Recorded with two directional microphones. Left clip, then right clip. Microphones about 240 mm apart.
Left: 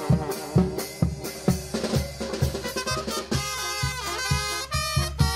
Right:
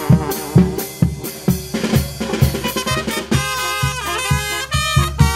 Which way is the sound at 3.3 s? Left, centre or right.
Centre.